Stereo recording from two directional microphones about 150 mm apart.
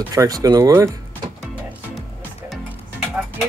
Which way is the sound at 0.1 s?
25° right (ahead or behind).